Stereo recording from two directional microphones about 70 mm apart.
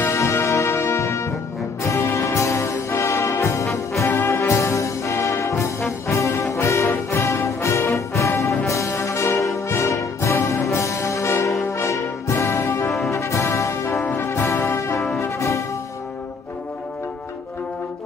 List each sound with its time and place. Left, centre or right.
0.0 s music: left
6.5 s brass instrument: left
12.8 s brass instrument: centre
13.1 s brass instrument: left
14.0 s brass instrument: left
15.2 s music: left